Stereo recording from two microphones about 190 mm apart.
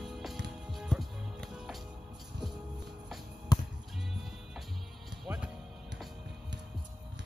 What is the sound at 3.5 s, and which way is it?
Music, 20° left (ahead or behind).